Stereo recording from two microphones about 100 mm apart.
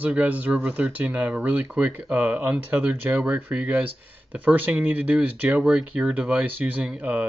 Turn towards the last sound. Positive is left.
turn(degrees=-15)  # may be behind; listen again after turning